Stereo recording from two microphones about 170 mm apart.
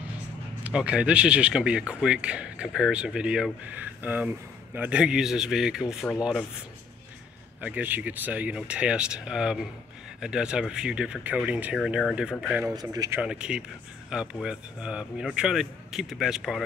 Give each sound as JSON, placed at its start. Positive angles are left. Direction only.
{"t": 0.7, "sound": "speech", "side_deg": -5}
{"t": 7.6, "sound": "speech", "side_deg": -10}
{"t": 12.7, "sound": "speech", "side_deg": -20}
{"t": 13.2, "sound": "speech", "side_deg": -5}